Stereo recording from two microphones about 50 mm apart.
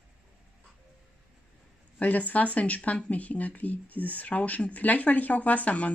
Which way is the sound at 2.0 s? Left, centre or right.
Left.